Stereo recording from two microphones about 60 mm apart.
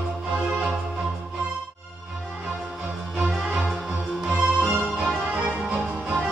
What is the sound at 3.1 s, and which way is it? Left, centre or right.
Music, centre.